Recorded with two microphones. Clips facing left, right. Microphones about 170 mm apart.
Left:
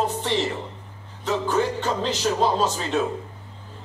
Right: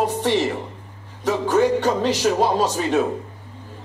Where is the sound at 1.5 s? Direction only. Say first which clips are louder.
Right 9 dB; 60° right (ahead or behind).